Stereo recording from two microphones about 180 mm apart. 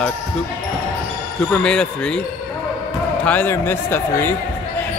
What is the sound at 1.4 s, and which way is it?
Speech, 5° left (ahead or behind).